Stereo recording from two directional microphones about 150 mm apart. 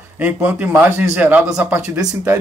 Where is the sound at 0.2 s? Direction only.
10° right (ahead or behind).